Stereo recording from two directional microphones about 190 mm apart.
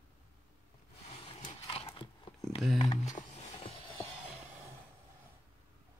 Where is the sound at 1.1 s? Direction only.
35° left (ahead or behind).